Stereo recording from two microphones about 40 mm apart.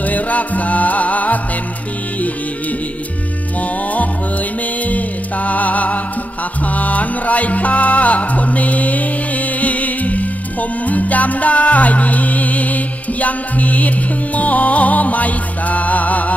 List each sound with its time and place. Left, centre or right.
0.0 s music: left
4.8 s music: left